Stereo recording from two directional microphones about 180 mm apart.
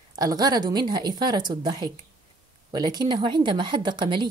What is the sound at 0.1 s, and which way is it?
A woman's voice, 20° right (ahead or behind).